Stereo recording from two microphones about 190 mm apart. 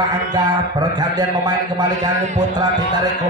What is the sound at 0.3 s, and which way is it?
Speech, 20° right (ahead or behind).